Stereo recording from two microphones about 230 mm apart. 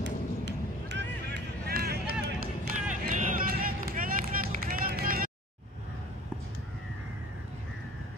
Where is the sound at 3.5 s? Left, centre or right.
Right.